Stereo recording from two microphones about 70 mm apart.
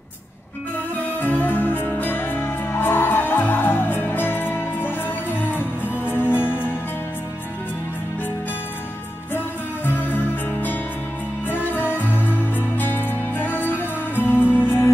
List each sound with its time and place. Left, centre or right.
1.2 s music: left
9.8 s music: left